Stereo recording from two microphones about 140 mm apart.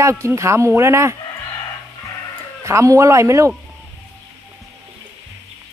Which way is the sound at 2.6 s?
20° right (ahead or behind).